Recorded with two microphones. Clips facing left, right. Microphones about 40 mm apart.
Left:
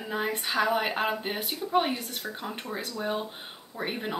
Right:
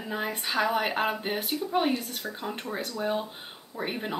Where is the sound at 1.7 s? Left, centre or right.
Centre.